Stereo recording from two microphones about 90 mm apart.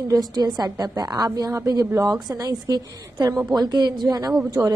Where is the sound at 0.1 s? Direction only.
45° right (ahead or behind).